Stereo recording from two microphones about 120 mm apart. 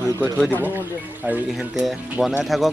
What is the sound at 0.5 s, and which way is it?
Speech, 20° right (ahead or behind).